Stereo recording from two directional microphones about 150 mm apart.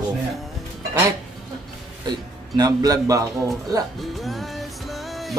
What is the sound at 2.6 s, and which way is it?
Speech, 25° right (ahead or behind).